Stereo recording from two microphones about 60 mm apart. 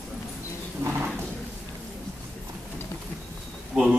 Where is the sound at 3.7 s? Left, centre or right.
Right.